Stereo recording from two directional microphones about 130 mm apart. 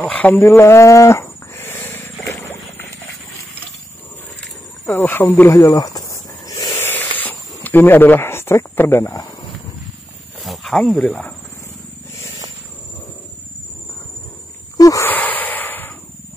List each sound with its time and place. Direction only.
0.0 s livestock: 10° left (ahead or behind)
4.4 s wild animals: 10° left (ahead or behind)
10.4 s a sound: centre (ahead or behind)
11.1 s speech: 10° left (ahead or behind)
14.8 s a sound: 25° left (ahead or behind)
15.0 s snort: 15° left (ahead or behind)